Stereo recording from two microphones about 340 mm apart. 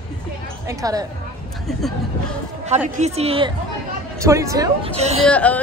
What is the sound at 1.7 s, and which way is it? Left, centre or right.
Speech, centre.